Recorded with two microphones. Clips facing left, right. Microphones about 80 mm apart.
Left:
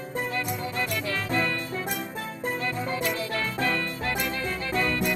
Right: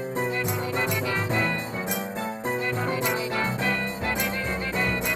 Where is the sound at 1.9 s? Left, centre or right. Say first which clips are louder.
Right 2 dB; left.